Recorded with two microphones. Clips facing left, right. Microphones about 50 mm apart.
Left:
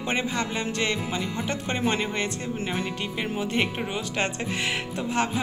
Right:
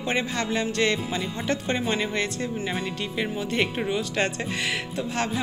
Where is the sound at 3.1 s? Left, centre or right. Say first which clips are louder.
Right 1 dB; centre.